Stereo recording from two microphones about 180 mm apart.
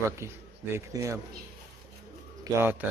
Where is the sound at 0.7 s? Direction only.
15° right (ahead or behind).